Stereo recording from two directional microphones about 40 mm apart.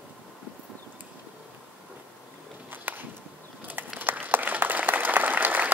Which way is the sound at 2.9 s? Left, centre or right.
Right.